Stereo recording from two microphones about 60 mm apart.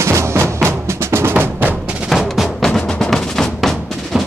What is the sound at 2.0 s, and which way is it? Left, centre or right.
Music, centre.